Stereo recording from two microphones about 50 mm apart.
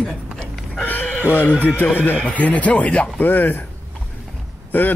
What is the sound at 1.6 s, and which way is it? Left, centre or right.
A man's voice, left.